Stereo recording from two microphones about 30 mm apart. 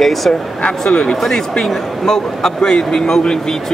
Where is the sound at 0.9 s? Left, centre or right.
Left.